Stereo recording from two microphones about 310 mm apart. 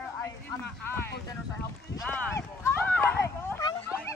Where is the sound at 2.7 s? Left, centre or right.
Centre.